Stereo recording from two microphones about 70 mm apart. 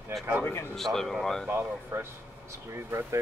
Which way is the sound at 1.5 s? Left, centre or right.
Right.